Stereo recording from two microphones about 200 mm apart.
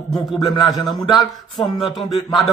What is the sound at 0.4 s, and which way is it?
Speech, 20° left (ahead or behind).